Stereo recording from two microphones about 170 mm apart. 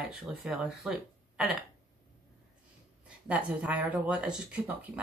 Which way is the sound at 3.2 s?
10° right (ahead or behind).